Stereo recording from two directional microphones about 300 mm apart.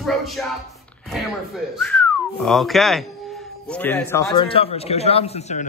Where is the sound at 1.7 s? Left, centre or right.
Centre; by 5.6 s left.